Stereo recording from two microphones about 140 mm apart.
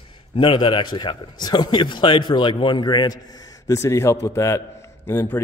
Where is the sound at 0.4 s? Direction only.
35° left (ahead or behind).